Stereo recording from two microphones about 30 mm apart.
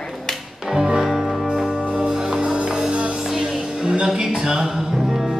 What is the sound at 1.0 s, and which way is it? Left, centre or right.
Music, centre.